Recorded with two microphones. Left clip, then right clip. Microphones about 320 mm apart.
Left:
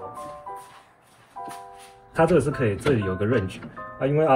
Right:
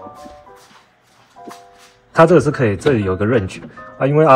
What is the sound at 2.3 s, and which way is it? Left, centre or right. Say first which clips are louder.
Speech: right 8 dB; centre.